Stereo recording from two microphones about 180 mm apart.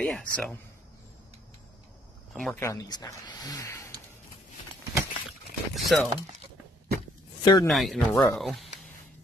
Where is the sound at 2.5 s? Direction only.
20° left (ahead or behind).